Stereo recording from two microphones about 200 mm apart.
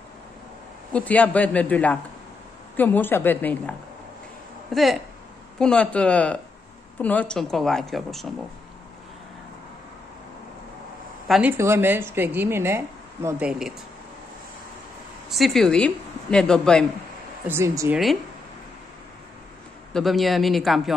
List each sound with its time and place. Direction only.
0.9 s a man's voice: 5° left (ahead or behind)
11.2 s speech: centre (ahead or behind)
11.5 s a woman's voice: 10° right (ahead or behind)
15.2 s a woman's voice: centre (ahead or behind)
17.5 s a woman's voice: 10° right (ahead or behind)
19.9 s a woman's voice: centre (ahead or behind)